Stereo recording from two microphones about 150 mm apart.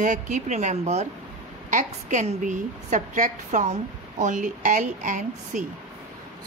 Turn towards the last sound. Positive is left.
turn(degrees=-55)  # may be behind; listen again after turning